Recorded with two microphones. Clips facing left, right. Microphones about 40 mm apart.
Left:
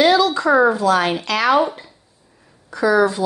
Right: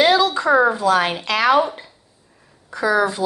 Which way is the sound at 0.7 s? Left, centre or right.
Right.